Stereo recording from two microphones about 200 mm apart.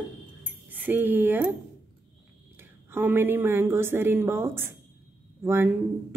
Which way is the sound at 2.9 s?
10° right (ahead or behind).